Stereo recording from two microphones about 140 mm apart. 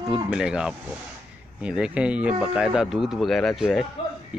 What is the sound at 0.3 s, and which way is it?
Speech, 5° right (ahead or behind).